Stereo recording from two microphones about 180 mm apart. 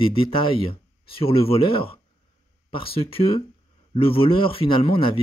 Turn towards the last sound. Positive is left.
turn(degrees=30)  # may be behind; listen again after turning